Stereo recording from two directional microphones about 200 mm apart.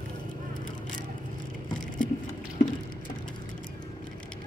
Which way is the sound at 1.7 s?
40° left (ahead or behind).